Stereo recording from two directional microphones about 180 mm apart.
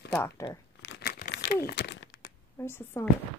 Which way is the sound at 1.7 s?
70° left (ahead or behind).